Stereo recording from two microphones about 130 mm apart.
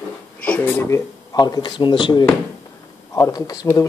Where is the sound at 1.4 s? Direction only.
35° left (ahead or behind).